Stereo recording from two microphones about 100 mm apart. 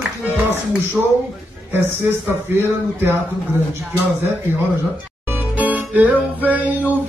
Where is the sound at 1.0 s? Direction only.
10° right (ahead or behind).